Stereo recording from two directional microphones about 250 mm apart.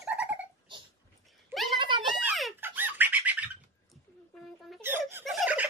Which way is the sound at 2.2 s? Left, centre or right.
Centre.